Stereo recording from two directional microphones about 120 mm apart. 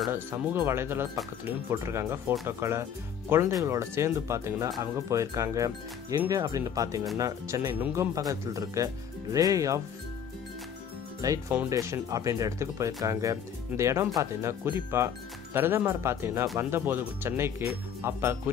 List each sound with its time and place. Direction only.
0.1 s speech: 20° right (ahead or behind)
11.1 s speech: 30° right (ahead or behind)